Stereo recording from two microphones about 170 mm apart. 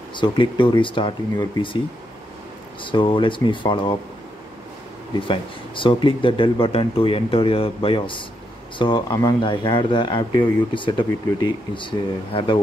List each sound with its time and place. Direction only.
0.1 s speech: 30° left (ahead or behind)
2.8 s speech: 30° left (ahead or behind)
5.1 s speech: 30° left (ahead or behind)